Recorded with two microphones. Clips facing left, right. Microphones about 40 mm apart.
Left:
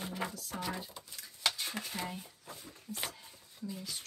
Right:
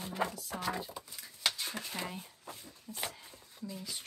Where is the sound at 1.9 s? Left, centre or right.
Centre.